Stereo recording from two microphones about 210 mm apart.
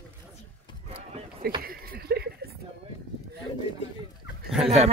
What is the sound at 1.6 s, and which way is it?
Chuckle, 45° right (ahead or behind).